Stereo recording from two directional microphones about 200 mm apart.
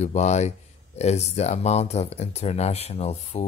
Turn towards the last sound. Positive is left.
turn(degrees=30)  # may be behind; listen again after turning